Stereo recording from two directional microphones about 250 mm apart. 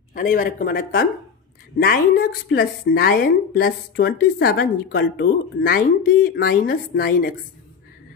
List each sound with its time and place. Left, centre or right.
0.1 s a woman's voice: left